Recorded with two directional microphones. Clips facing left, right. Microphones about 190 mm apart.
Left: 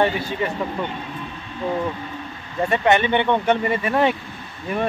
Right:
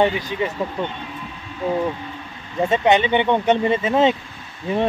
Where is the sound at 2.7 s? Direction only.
15° right (ahead or behind).